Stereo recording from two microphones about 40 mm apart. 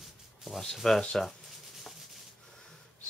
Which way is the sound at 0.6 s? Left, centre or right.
Centre.